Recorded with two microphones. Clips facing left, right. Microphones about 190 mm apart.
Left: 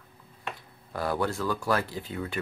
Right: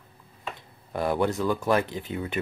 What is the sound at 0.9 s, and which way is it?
Speech, 20° right (ahead or behind).